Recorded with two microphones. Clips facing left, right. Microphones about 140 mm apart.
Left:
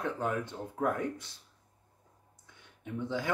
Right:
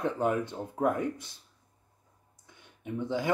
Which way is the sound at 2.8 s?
15° right (ahead or behind).